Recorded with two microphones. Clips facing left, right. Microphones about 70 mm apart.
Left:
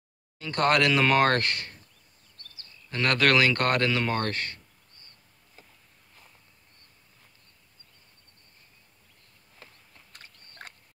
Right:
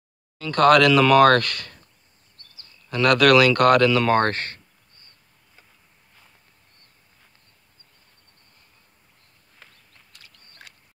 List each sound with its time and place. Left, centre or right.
0.4 s speech: right
3.1 s speech: right
4.1 s speech: right
10.1 s a sound: left